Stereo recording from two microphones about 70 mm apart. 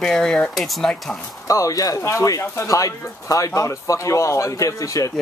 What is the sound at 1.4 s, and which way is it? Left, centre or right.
Speech, left.